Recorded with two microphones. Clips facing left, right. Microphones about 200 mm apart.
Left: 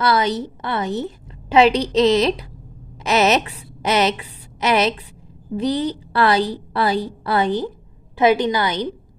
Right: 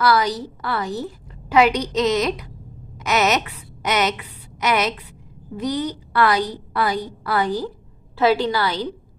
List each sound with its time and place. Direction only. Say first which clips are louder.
0.0 s a woman's voice: even; 25° left (ahead or behind)